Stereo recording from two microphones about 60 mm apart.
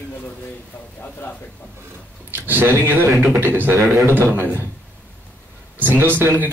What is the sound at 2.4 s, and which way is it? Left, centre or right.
Speech, right.